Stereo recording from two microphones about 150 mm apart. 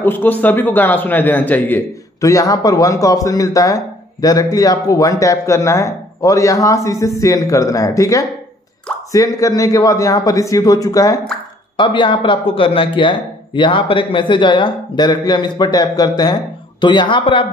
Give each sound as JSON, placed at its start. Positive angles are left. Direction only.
{"t": 0.0, "sound": "a man's voice", "side_deg": 10}